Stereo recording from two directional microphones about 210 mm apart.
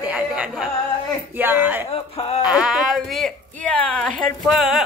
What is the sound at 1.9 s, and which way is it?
Speech, 30° left (ahead or behind).